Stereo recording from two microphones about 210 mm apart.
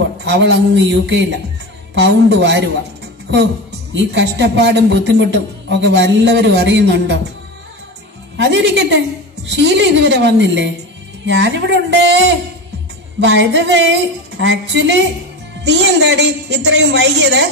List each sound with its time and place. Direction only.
0.2 s a man's voice: 55° right (ahead or behind)
3.9 s a man's voice: 60° right (ahead or behind)
8.4 s a man's voice: 55° right (ahead or behind)